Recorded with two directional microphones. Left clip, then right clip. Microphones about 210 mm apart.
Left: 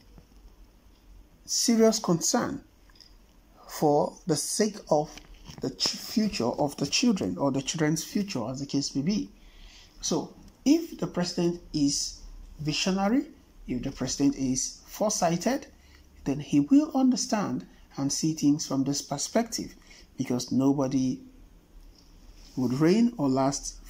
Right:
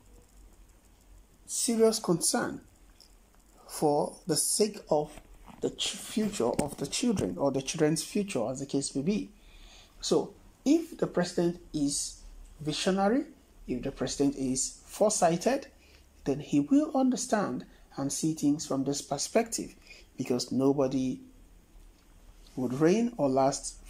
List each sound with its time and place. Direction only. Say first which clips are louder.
1.8 s speech: even; 5° right (ahead or behind)
3.6 s speech: left 3 dB; 5° right (ahead or behind)
5.8 s speech: left 4 dB; 25° left (ahead or behind)
6.3 s speech: left 1 dB; 5° left (ahead or behind)
22.6 s speech: left 2 dB; 5° left (ahead or behind)